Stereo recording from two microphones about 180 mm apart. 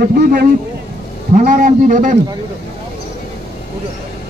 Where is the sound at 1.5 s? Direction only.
45° right (ahead or behind).